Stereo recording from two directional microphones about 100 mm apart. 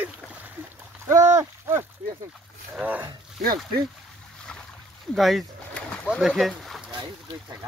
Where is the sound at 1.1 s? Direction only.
30° right (ahead or behind).